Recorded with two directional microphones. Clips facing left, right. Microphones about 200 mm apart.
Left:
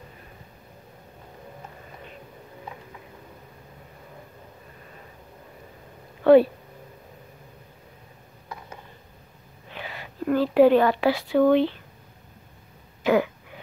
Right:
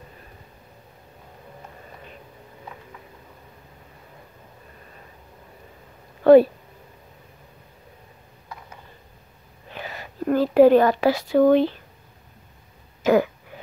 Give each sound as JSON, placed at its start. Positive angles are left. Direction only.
{"t": 6.2, "sound": "speech", "side_deg": -45}
{"t": 9.8, "sound": "a sound", "side_deg": -40}
{"t": 13.0, "sound": "throat clearing", "side_deg": -40}